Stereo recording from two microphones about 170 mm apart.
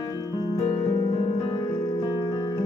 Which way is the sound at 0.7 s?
35° left (ahead or behind).